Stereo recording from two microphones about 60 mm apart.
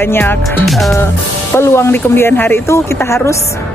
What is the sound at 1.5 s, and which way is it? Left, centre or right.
Speech, left.